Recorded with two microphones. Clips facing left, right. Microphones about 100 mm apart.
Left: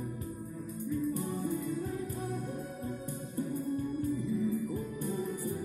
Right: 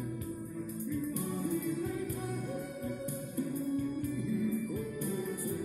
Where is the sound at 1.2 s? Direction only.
30° left (ahead or behind).